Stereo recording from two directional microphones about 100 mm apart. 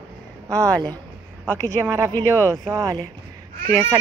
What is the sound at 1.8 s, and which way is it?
Speech, 35° right (ahead or behind).